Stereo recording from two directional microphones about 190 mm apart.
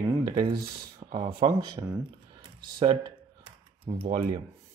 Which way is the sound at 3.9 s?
30° right (ahead or behind).